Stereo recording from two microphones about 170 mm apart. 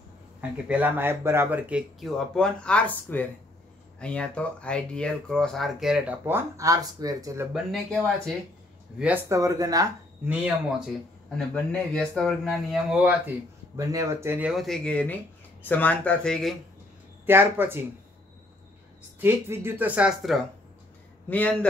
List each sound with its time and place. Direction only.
0.4 s speech: 10° right (ahead or behind)
8.9 s speech: 10° right (ahead or behind)
10.2 s speech: 5° right (ahead or behind)
11.3 s speech: 5° left (ahead or behind)
13.7 s speech: 20° right (ahead or behind)
14.5 s speech: centre (ahead or behind)
17.3 s speech: 15° right (ahead or behind)
19.1 s speech: 15° right (ahead or behind)
21.3 s speech: 10° left (ahead or behind)